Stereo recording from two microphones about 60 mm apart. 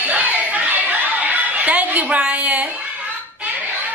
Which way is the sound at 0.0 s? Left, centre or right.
Right.